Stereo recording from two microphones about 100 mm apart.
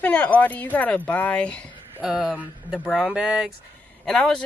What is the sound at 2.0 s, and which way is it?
Speech, 5° right (ahead or behind).